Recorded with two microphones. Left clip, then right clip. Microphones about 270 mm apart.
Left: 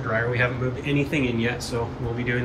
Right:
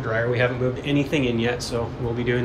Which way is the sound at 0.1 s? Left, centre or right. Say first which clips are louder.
Right 2 dB; centre.